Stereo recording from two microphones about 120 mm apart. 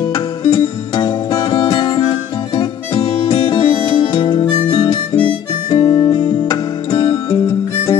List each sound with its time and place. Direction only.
0.0 s music: 40° left (ahead or behind)
4.6 s harmonica: 40° left (ahead or behind)